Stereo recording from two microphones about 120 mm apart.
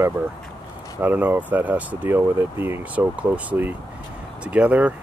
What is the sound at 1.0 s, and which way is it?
Speech, 15° right (ahead or behind).